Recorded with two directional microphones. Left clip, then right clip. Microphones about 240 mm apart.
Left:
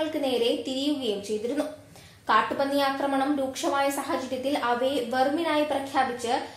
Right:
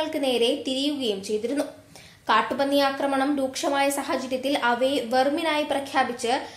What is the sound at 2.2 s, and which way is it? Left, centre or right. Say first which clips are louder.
A woman's voice: right 1 dB; right.